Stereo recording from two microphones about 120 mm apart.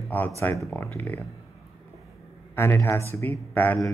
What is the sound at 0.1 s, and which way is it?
Speech, 15° left (ahead or behind).